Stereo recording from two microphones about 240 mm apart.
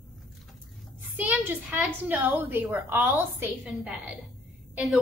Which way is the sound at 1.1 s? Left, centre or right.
Centre.